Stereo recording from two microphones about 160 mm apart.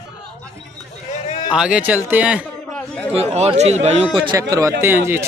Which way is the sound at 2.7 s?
5° left (ahead or behind).